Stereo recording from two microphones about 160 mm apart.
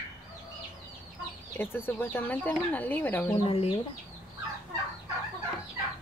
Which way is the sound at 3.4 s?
35° left (ahead or behind).